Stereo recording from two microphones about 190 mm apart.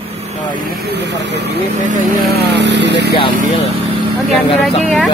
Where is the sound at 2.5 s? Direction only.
65° right (ahead or behind).